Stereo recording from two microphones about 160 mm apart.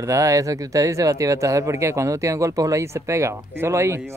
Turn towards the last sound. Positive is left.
turn(degrees=-15)  # may be behind; listen again after turning